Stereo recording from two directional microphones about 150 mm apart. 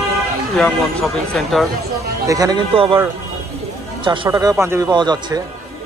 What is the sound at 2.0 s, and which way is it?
Speech, 25° right (ahead or behind).